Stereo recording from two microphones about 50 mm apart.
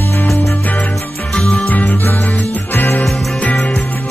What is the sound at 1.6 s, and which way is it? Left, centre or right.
Music, left.